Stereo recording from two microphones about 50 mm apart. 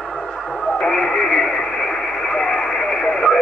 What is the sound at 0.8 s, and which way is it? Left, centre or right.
Radio, centre.